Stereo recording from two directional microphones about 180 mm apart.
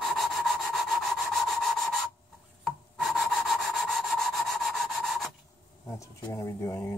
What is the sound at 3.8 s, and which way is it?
Rub, centre (ahead or behind).